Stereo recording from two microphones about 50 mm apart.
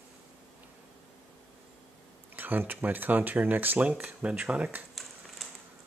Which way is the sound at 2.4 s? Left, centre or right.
Right.